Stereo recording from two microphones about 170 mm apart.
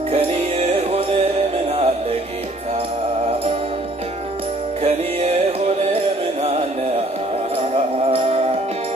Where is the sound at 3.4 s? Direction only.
35° right (ahead or behind).